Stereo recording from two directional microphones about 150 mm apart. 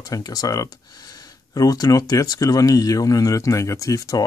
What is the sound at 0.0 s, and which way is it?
Speech, 25° left (ahead or behind).